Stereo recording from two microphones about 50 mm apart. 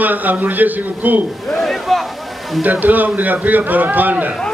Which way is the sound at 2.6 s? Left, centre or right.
Right.